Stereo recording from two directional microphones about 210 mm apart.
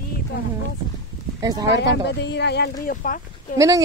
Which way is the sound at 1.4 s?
15° right (ahead or behind).